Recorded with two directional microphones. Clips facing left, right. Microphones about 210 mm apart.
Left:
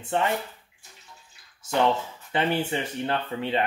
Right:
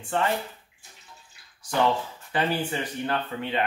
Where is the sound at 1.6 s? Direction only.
25° left (ahead or behind).